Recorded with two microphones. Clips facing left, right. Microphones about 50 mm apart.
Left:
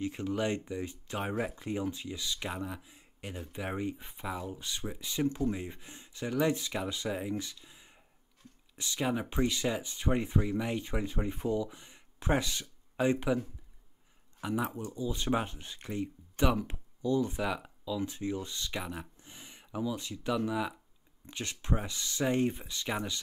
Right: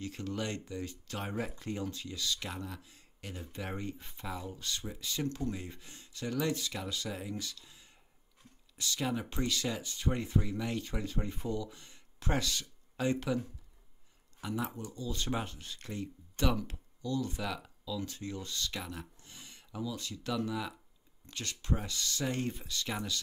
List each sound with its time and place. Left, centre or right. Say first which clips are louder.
0.0 s speech: left 5 dB; centre
14.4 s speech: left 4 dB; centre